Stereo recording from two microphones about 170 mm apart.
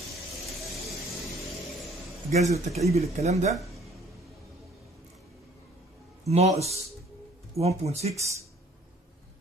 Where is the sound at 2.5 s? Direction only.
40° right (ahead or behind).